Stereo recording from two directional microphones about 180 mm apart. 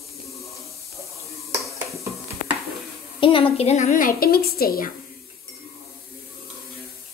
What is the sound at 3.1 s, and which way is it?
A woman's voice, 30° left (ahead or behind).